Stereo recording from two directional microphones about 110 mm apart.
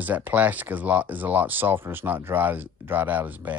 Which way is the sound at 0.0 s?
15° right (ahead or behind).